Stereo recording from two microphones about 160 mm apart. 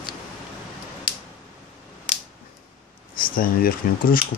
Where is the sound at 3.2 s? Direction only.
65° left (ahead or behind).